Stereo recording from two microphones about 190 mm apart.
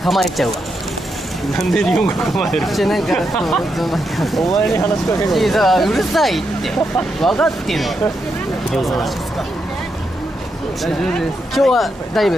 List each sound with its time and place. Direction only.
0.0 s speech: centre (ahead or behind)
1.7 s speech: 5° left (ahead or behind)
10.8 s speech: centre (ahead or behind)